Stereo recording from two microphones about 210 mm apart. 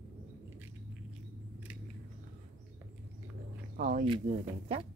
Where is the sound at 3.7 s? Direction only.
40° right (ahead or behind).